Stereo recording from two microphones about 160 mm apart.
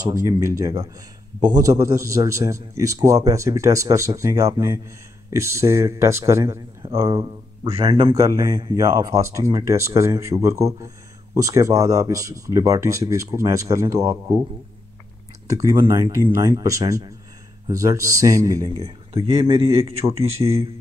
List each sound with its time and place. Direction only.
0.1 s a man's voice: 20° right (ahead or behind)
7.6 s speech: 35° right (ahead or behind)
7.9 s a man's voice: 25° right (ahead or behind)
15.4 s a man's voice: 20° right (ahead or behind)
19.1 s speech: 35° right (ahead or behind)
20.2 s speech: 15° right (ahead or behind)